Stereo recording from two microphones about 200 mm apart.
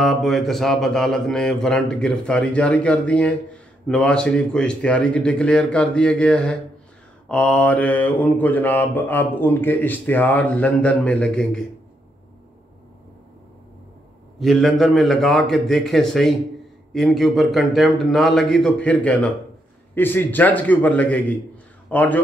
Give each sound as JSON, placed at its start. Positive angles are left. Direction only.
{"t": 0.0, "sound": "speech", "side_deg": 0}
{"t": 7.2, "sound": "mantra", "side_deg": 5}
{"t": 14.4, "sound": "speech", "side_deg": 0}
{"t": 19.9, "sound": "mantra", "side_deg": 10}
{"t": 21.8, "sound": "a man's voice", "side_deg": 5}